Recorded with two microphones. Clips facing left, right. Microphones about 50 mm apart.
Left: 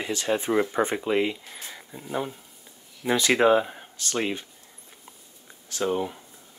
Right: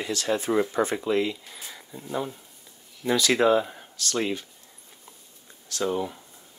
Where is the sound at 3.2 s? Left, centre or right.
Left.